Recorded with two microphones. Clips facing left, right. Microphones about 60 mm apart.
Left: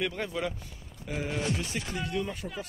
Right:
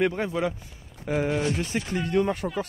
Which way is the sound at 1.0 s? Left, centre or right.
Right.